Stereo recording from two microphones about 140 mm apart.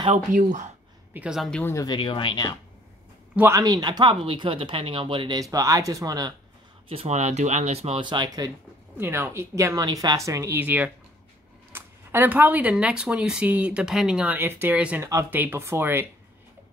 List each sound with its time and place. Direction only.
0.1 s speech: 60° right (ahead or behind)
1.1 s speech: 5° right (ahead or behind)
1.5 s speech: 15° left (ahead or behind)
1.9 s speech: 35° left (ahead or behind)
3.3 s speech: 20° right (ahead or behind); by 5.4 s 35° right (ahead or behind)
5.4 s a woman's voice: 25° right (ahead or behind)
6.9 s speech: 50° right (ahead or behind)
8.0 s speech: 35° right (ahead or behind)
8.9 s a woman's voice: 15° right (ahead or behind)